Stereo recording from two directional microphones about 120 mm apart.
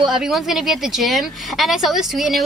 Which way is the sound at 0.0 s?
5° right (ahead or behind).